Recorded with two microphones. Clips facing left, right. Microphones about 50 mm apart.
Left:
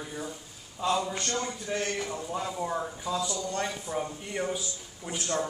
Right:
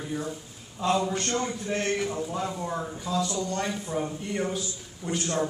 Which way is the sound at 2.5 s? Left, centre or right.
Centre.